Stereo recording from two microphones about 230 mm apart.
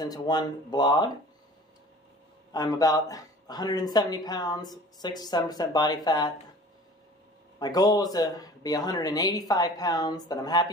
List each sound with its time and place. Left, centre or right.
0.0 s speech: centre
2.5 s speech: centre
7.5 s speech: centre